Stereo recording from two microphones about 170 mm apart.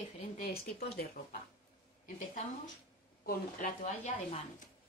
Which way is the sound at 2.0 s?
50° left (ahead or behind).